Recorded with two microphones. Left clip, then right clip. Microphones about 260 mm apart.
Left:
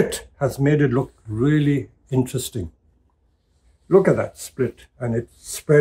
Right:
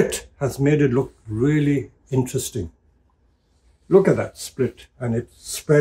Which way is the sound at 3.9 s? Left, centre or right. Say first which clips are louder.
Even; centre.